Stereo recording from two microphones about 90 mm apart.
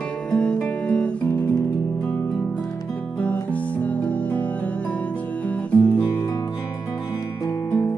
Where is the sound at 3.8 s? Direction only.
15° left (ahead or behind).